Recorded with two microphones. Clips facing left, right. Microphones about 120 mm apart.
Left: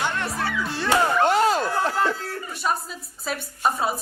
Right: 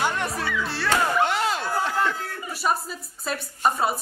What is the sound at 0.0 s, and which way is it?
Music, 15° right (ahead or behind).